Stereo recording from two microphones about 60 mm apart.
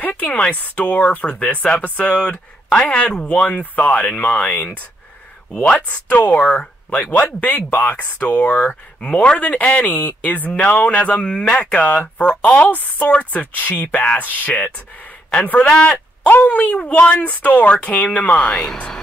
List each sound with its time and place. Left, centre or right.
0.0 s speech: left; by 3.6 s centre
3.7 s speech: left
6.9 s speech: left
9.8 s speech: left
18.4 s speech: centre